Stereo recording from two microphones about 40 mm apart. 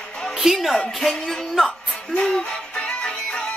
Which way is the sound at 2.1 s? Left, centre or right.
Centre.